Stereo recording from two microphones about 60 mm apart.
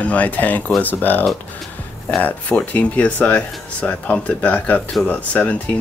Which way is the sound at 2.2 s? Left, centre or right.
Left.